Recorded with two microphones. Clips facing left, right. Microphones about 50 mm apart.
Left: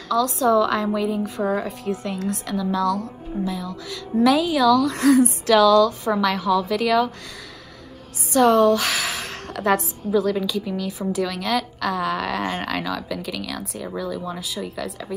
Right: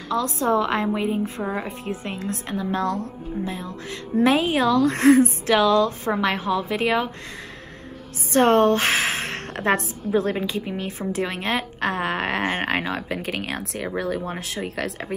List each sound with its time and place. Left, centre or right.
0.1 s a woman's voice: right
8.3 s a woman's voice: right